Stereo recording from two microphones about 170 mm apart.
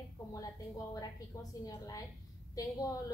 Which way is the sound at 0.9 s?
20° left (ahead or behind).